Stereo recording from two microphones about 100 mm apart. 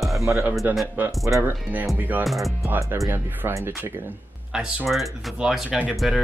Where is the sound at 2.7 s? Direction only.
20° right (ahead or behind).